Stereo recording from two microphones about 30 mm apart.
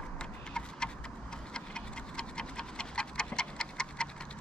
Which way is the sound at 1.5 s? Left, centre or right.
Left.